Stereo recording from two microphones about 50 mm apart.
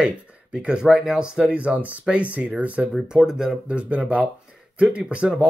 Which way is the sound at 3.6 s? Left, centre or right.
Right.